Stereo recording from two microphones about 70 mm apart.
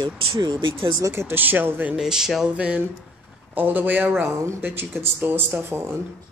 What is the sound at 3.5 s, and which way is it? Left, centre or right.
Speech, right.